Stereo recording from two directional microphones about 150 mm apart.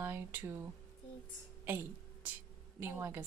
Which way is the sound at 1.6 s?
15° right (ahead or behind).